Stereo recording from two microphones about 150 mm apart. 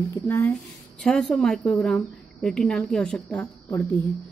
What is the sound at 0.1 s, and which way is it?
Speech, 15° left (ahead or behind).